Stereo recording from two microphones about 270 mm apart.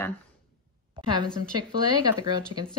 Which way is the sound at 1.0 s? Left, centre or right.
Centre.